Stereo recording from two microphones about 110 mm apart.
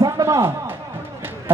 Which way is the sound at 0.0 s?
30° right (ahead or behind).